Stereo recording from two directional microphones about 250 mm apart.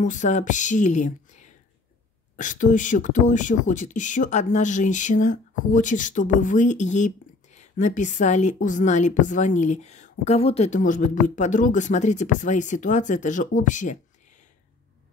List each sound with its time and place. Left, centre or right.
0.0 s speech: left